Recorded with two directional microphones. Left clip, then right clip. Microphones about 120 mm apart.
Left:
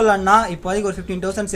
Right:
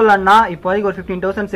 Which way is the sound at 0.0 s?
30° left (ahead or behind).